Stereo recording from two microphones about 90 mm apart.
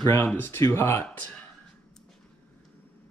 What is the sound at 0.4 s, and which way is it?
Speech, 30° left (ahead or behind).